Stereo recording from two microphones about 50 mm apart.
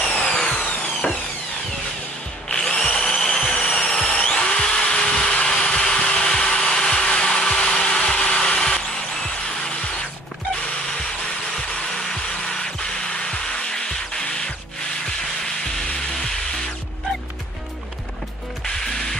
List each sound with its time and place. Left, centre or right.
0.2 s a sound: centre
2.5 s tools: centre
11.9 s music: centre